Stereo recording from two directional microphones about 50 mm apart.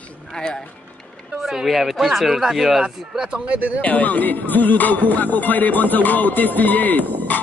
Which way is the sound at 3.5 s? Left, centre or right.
Right.